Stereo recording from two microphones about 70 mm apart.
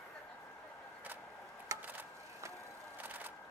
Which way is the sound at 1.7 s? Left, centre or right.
Right.